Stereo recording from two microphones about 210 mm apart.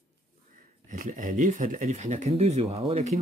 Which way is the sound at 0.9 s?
40° right (ahead or behind).